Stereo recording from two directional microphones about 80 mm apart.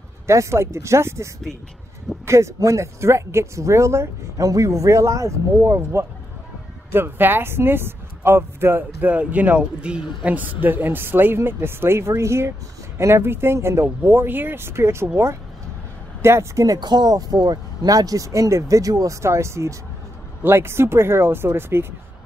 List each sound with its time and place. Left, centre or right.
0.3 s speech: right
16.6 s speech: right